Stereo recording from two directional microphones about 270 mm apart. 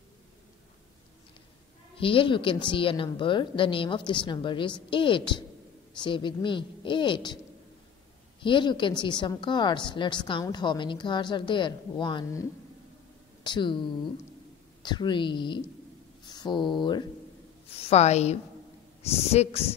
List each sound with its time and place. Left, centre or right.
2.0 s a woman's voice: centre
8.4 s a woman's voice: centre
14.8 s a woman's voice: centre